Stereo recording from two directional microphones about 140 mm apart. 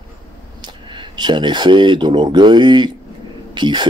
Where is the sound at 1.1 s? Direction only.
30° right (ahead or behind).